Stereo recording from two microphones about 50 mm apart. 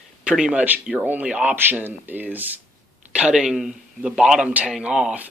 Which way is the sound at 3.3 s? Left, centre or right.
Centre.